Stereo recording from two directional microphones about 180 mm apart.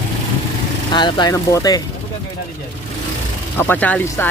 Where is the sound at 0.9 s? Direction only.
25° left (ahead or behind).